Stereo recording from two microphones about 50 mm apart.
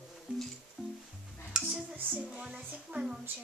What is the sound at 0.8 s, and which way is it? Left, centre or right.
Music, centre.